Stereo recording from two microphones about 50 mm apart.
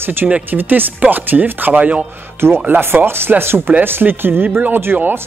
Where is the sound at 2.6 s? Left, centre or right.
Right.